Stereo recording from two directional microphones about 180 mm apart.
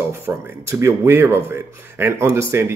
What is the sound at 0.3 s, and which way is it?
Speech, 10° right (ahead or behind).